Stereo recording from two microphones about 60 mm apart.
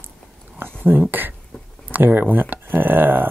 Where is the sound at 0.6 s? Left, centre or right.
Right.